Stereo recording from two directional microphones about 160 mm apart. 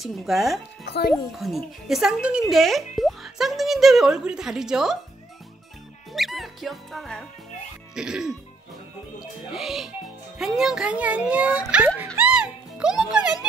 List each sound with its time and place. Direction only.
0.0 s speech: centre (ahead or behind)
0.8 s speech: 90° left
1.3 s speech: centre (ahead or behind)
6.1 s speech: centre (ahead or behind)
9.5 s a child's voice: centre (ahead or behind)
12.2 s music: 5° right (ahead or behind)